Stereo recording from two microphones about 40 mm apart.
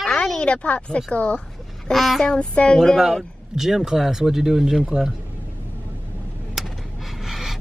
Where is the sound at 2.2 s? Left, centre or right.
Left.